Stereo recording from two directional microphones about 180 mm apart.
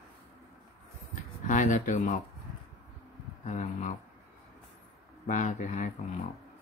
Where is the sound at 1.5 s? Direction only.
45° left (ahead or behind).